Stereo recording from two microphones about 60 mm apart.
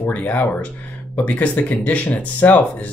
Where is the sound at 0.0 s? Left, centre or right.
Left.